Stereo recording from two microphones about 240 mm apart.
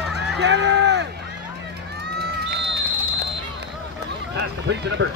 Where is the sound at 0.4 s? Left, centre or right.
Right.